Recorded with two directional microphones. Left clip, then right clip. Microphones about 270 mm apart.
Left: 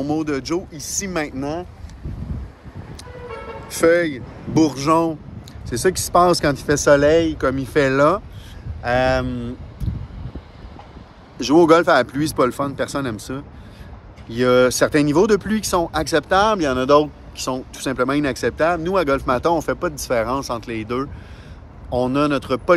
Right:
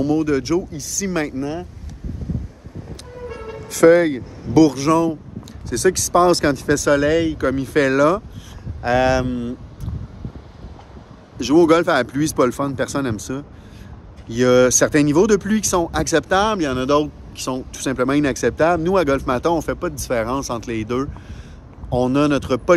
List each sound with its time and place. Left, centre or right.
0.0 s speech: centre
3.6 s speech: centre
11.3 s speech: centre